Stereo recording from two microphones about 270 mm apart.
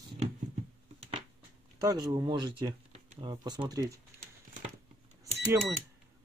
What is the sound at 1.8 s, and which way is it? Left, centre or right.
Speech, centre.